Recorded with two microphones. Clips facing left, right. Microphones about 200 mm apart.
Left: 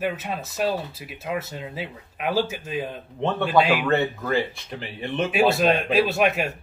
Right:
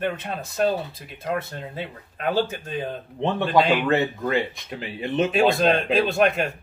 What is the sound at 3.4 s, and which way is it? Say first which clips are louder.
Speech: even; 5° left (ahead or behind).